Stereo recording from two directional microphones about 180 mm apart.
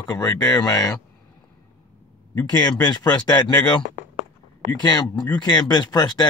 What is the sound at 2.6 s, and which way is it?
Speech, 25° left (ahead or behind).